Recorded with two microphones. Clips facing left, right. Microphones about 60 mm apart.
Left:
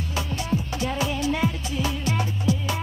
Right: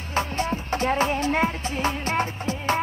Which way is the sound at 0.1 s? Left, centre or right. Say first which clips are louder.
Right 3 dB; right.